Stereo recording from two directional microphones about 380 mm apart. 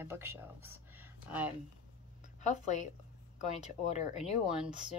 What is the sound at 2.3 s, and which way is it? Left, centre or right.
A woman's voice, centre.